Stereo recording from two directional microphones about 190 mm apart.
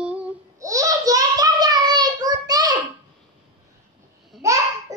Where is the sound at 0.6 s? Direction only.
15° right (ahead or behind).